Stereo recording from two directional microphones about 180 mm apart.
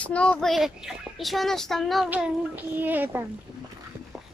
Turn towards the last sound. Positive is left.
turn(degrees=-10)  # may be behind; listen again after turning